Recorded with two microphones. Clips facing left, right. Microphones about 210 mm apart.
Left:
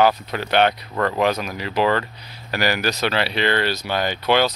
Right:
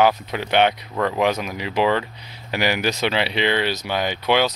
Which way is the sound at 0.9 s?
5° right (ahead or behind).